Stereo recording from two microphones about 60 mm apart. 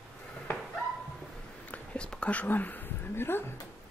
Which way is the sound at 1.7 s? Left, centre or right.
Centre.